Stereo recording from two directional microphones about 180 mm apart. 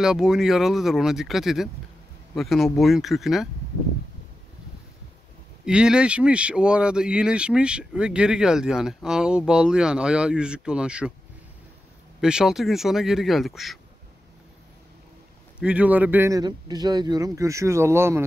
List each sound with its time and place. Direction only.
0.0 s speech: 5° right (ahead or behind)
5.7 s speech: 5° right (ahead or behind)
12.2 s speech: 5° right (ahead or behind)
15.6 s a man's voice: 5° right (ahead or behind)